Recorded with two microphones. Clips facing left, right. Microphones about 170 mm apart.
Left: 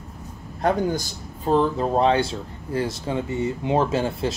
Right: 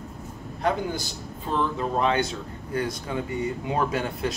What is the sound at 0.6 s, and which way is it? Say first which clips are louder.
Speech: left 4 dB; 45° left (ahead or behind).